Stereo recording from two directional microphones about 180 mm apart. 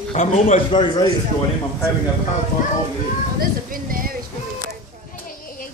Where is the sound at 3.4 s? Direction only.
50° right (ahead or behind).